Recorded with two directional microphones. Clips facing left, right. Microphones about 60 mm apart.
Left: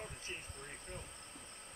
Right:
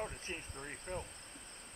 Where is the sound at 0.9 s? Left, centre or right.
Right.